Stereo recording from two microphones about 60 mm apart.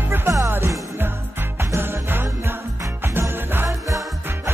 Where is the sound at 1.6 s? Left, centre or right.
Right.